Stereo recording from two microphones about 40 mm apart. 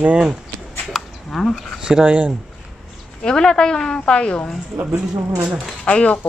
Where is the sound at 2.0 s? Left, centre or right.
Right.